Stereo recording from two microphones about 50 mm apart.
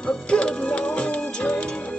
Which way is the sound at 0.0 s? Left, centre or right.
Centre.